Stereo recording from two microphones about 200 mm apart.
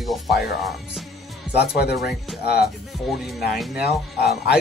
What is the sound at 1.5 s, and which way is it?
Speech, 50° left (ahead or behind).